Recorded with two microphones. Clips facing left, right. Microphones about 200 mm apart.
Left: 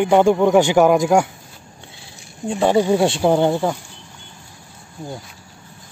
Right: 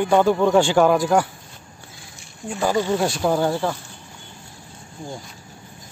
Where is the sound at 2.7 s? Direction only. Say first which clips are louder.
Left 5 dB; 15° left (ahead or behind).